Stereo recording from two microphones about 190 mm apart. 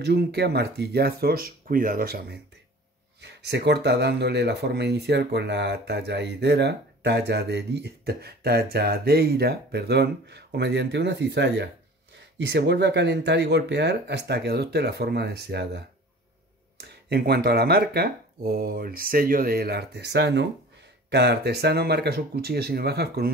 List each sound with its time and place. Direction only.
0.0 s speech: 60° right (ahead or behind)